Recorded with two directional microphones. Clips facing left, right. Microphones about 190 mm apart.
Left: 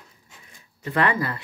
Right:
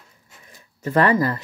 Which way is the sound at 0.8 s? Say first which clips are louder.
Right 5 dB; 40° right (ahead or behind).